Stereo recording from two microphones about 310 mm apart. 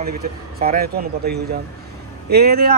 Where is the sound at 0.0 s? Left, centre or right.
Right.